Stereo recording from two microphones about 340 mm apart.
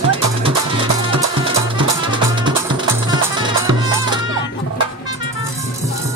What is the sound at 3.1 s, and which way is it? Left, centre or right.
Music, centre.